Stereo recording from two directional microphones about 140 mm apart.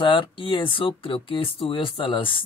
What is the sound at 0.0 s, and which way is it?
Speech, 35° left (ahead or behind).